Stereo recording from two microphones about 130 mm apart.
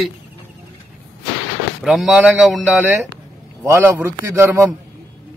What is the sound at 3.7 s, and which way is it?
A man's voice, 15° right (ahead or behind).